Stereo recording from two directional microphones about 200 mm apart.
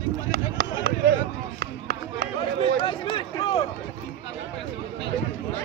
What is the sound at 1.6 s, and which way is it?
Run, 50° right (ahead or behind).